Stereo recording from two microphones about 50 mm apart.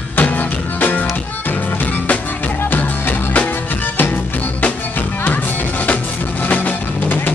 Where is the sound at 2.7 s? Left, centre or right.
Left.